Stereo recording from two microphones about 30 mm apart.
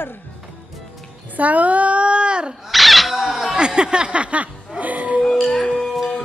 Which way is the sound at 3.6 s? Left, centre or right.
Right.